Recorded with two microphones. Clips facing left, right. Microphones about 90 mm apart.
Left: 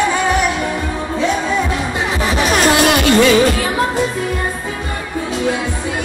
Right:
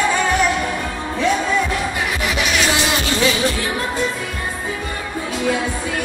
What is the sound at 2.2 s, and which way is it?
Music, 35° left (ahead or behind).